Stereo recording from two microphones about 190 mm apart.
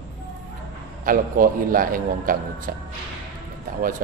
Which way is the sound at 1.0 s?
45° right (ahead or behind).